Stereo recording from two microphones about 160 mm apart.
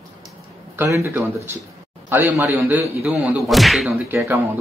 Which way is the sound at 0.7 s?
20° right (ahead or behind).